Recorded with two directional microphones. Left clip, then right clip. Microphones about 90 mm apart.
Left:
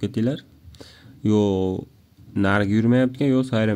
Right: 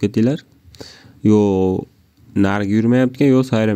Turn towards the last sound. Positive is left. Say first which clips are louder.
# right 6 dB
turn(degrees=-40)  # may be behind; listen again after turning